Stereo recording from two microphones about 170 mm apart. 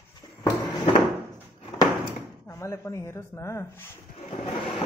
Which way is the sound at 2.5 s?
15° left (ahead or behind).